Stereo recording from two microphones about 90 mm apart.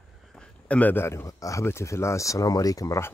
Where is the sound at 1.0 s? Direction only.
35° left (ahead or behind).